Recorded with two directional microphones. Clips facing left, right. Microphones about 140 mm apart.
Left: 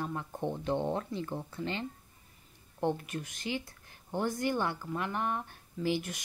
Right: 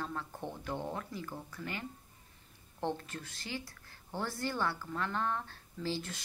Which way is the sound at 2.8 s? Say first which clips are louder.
Left 5 dB; 15° left (ahead or behind).